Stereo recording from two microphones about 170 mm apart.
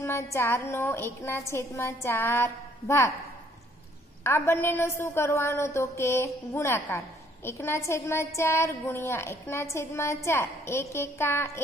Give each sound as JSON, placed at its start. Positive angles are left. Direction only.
{"t": 0.0, "sound": "a woman's voice", "side_deg": 15}
{"t": 4.2, "sound": "a woman's voice", "side_deg": 15}